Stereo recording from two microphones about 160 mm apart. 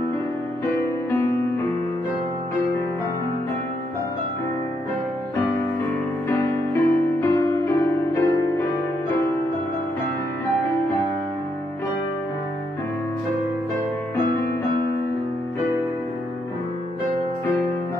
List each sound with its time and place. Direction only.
6.2 s music: 15° left (ahead or behind)